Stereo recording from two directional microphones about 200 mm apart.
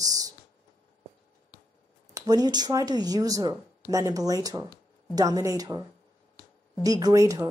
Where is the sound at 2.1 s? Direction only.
20° right (ahead or behind).